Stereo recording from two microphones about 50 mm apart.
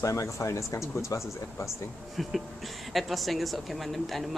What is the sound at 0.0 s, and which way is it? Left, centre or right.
Speech, left.